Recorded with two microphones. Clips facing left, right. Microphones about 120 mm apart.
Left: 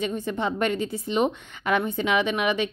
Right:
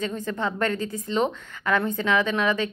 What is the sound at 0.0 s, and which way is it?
Speech, 20° left (ahead or behind).